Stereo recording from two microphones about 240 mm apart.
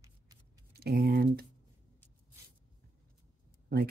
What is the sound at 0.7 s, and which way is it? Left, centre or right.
Typing, right.